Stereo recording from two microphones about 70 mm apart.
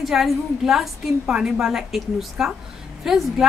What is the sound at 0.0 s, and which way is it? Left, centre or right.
A woman's voice, centre.